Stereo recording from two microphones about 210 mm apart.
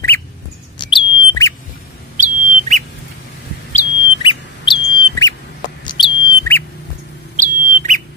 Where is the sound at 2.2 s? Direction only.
35° right (ahead or behind).